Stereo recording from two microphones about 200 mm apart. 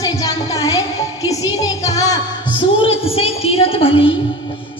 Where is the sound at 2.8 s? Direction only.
30° left (ahead or behind).